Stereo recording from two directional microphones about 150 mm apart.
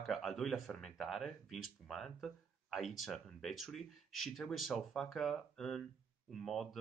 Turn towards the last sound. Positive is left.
turn(degrees=0)  # may be behind; listen again after turning